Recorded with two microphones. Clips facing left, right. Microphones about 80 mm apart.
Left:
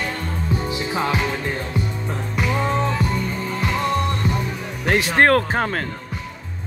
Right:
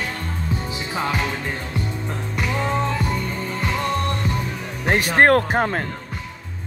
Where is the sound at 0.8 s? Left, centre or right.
Centre.